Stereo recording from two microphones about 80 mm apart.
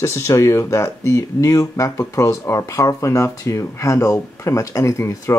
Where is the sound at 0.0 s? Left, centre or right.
Left.